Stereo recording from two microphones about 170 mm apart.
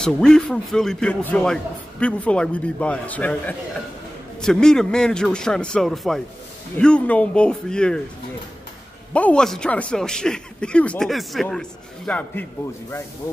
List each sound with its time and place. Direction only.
0.0 s speech: 5° left (ahead or behind)
9.1 s speech: 5° left (ahead or behind)